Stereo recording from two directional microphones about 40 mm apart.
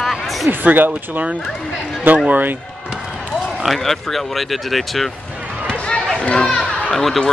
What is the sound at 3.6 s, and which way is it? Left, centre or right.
Speech, centre.